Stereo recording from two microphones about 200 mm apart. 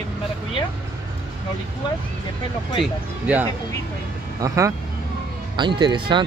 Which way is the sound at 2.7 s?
5° right (ahead or behind).